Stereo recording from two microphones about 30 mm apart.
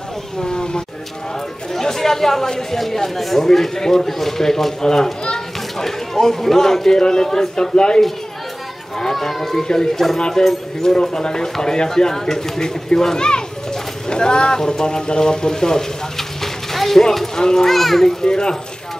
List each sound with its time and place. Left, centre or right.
0.4 s speech: left
1.8 s speech: centre
7.7 s speech: left
9.1 s speech: centre; by 15.8 s left
16.7 s a sound: centre
17.4 s speech: left
17.6 s speech: centre
18.2 s speech: left